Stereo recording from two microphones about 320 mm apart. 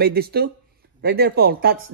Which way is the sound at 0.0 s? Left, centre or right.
Right.